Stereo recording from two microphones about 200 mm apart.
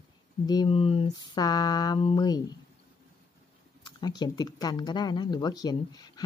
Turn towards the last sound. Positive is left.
turn(degrees=20)  # may be behind; listen again after turning